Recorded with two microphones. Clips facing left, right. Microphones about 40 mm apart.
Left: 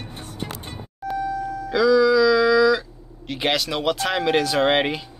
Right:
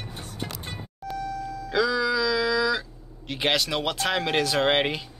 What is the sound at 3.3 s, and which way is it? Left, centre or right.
Speech, centre.